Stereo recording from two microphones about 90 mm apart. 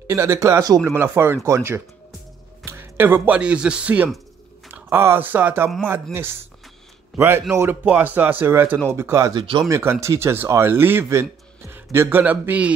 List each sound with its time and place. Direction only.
0.0 s speech: 30° right (ahead or behind)
7.2 s speech: 30° right (ahead or behind)
7.8 s speech: 15° right (ahead or behind)
9.3 s speech: 65° right (ahead or behind)
9.7 s speech: 30° right (ahead or behind)